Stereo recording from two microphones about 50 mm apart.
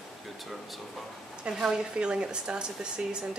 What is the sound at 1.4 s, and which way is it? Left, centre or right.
Speech, centre.